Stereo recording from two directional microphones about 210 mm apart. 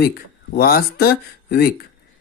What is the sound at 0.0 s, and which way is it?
Speech, 45° left (ahead or behind).